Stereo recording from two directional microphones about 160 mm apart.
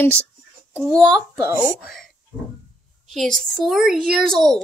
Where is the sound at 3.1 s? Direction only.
Centre (ahead or behind).